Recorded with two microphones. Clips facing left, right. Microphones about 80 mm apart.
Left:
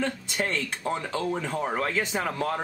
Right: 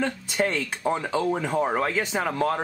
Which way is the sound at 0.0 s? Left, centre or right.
Centre.